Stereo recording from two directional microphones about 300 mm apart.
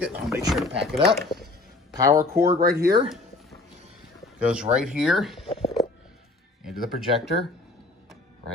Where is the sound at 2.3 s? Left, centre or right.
Right.